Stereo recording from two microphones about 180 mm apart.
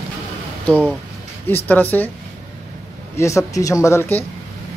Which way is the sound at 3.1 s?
15° left (ahead or behind).